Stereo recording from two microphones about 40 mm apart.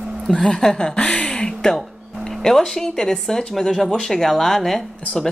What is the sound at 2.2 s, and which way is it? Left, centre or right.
Speech, centre.